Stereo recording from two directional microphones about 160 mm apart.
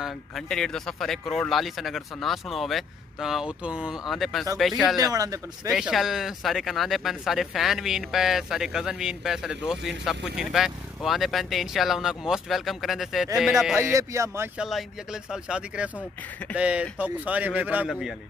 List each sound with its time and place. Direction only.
0.0 s speech: 5° left (ahead or behind)
4.9 s speech: 20° right (ahead or behind)
5.7 s speech: centre (ahead or behind)
13.7 s a man's voice: 20° right (ahead or behind)
14.6 s a man's voice: centre (ahead or behind)